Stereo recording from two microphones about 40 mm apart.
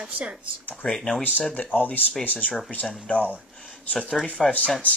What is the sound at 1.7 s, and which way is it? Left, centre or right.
Speech, left.